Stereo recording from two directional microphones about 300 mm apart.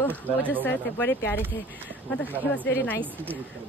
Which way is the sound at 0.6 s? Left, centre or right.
Centre.